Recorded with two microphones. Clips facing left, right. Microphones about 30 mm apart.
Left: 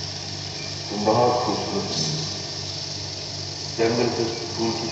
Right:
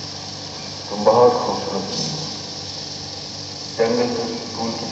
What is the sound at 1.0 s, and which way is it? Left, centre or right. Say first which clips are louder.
Radio: right 6 dB; centre.